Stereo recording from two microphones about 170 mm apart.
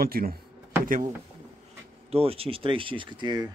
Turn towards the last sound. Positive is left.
turn(degrees=-25)  # may be behind; listen again after turning